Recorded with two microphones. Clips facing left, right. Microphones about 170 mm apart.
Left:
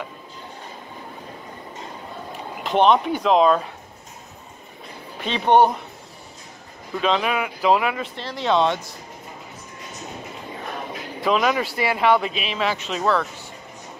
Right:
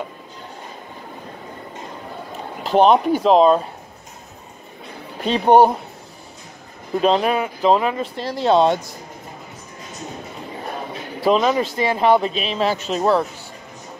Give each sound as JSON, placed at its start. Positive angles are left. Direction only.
{"t": 2.6, "sound": "speech", "side_deg": -35}
{"t": 5.2, "sound": "speech", "side_deg": -40}
{"t": 7.0, "sound": "speech", "side_deg": -40}
{"t": 10.9, "sound": "bird", "side_deg": -30}
{"t": 11.9, "sound": "speech", "side_deg": -35}